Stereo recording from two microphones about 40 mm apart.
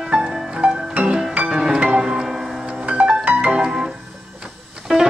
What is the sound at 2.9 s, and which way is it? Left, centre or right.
Music, right.